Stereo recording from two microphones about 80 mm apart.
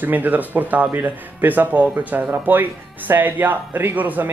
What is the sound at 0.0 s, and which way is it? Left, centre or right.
Speech, right.